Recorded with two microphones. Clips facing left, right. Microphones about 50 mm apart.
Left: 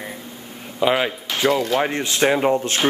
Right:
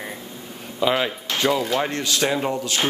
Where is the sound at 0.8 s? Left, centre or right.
Centre.